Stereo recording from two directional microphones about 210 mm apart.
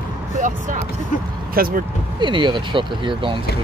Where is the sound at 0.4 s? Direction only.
35° right (ahead or behind).